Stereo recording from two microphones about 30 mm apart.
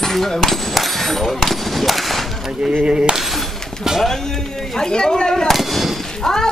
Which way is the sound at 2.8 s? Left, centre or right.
Right.